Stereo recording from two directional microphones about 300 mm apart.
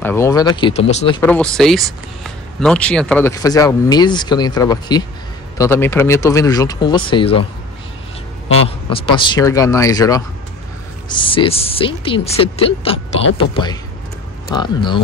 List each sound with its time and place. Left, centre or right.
0.0 s speech: centre
1.2 s speech: centre
8.9 s speech: centre
14.5 s speech: centre